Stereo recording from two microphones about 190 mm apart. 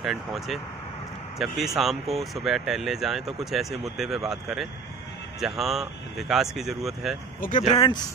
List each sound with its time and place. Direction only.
0.0 s speech: centre (ahead or behind)
7.3 s speech: 45° left (ahead or behind)
7.7 s speech: 25° left (ahead or behind)